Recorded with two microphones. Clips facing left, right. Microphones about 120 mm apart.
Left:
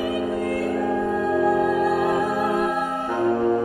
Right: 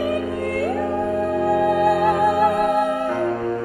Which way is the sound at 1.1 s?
65° right (ahead or behind).